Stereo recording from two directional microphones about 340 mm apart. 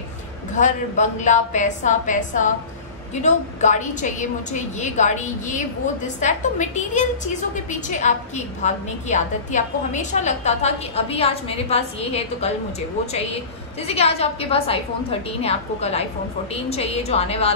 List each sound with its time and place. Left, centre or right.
0.6 s a woman's voice: left